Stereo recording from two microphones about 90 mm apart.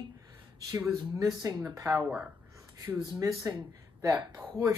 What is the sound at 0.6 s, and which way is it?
Speech, 40° right (ahead or behind).